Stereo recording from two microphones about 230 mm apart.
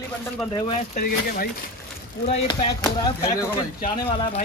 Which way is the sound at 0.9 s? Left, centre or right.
Left.